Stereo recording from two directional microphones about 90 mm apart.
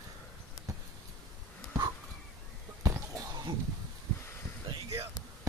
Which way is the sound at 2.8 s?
35° right (ahead or behind).